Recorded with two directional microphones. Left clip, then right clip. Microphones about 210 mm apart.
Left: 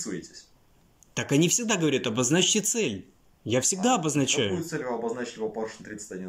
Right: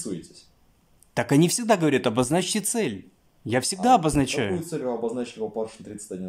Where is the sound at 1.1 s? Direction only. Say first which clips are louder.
Right 3 dB; 25° right (ahead or behind).